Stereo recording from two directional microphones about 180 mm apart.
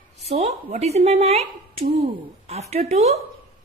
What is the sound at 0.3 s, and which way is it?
A woman's voice, 40° right (ahead or behind).